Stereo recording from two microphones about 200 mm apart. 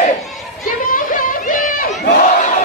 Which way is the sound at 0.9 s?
45° left (ahead or behind).